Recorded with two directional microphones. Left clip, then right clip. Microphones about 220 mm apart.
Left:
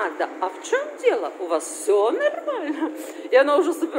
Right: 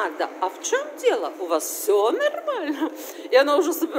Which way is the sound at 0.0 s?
5° right (ahead or behind).